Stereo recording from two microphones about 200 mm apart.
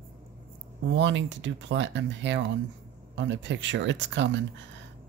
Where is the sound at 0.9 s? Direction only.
65° right (ahead or behind).